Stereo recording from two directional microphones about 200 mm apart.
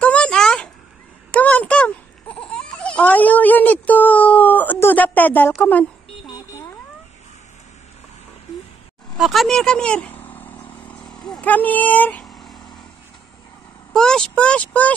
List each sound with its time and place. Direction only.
0.0 s a sound: 5° left (ahead or behind)
1.3 s babbling: 5° left (ahead or behind)
6.2 s vehicle: 20° left (ahead or behind)
9.2 s vehicle: centre (ahead or behind)
13.9 s speech: 5° left (ahead or behind)